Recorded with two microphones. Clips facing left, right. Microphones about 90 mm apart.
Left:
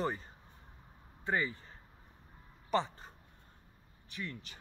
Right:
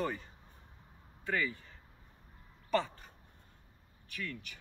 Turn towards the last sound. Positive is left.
turn(degrees=30)  # may be behind; listen again after turning